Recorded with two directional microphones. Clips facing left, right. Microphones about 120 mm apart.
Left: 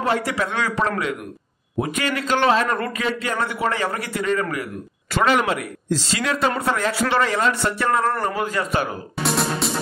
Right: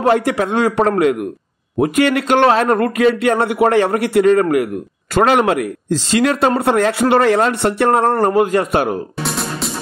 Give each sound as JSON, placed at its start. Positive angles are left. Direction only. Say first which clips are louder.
{"t": 0.0, "sound": "a man's voice", "louder": "right 7 dB", "side_deg": -45}
{"t": 1.8, "sound": "a man's voice", "louder": "right 9 dB", "side_deg": -60}
{"t": 6.5, "sound": "speech", "louder": "right 8 dB", "side_deg": -35}
{"t": 6.8, "sound": "a man's voice", "louder": "right 8 dB", "side_deg": -55}
{"t": 8.0, "sound": "a man's voice", "louder": "right 9 dB", "side_deg": -40}
{"t": 9.2, "sound": "music", "louder": "even", "side_deg": 0}